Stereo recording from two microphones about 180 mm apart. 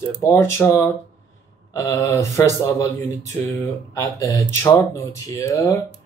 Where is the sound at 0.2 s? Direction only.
15° left (ahead or behind).